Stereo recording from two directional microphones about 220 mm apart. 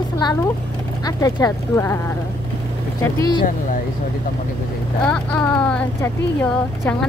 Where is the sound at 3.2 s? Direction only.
20° left (ahead or behind).